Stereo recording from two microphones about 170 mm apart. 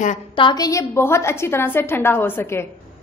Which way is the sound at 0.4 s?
25° left (ahead or behind).